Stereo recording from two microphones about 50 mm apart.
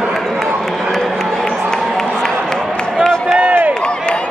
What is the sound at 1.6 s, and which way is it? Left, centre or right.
Run, centre.